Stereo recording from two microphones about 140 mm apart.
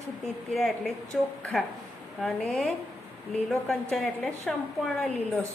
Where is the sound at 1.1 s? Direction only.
Centre (ahead or behind).